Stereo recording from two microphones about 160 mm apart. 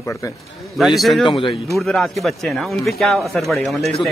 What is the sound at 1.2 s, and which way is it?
Speech, 30° left (ahead or behind).